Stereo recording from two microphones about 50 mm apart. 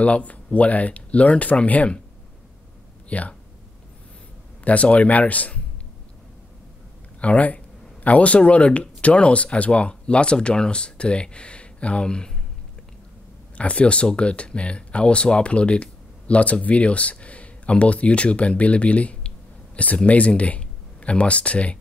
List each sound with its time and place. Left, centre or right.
0.0 s speech: left
3.1 s speech: left
4.6 s speech: left
7.2 s speech: left
13.6 s speech: left